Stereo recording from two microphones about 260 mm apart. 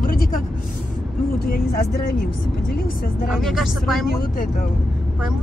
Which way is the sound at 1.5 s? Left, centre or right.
Left.